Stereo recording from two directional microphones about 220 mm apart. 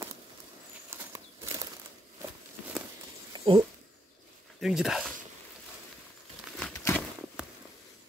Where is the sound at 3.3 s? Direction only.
20° right (ahead or behind).